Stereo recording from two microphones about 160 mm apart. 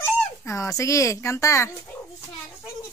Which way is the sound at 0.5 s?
20° left (ahead or behind).